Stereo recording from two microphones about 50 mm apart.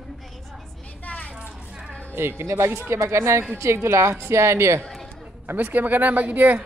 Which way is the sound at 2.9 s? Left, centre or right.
Right.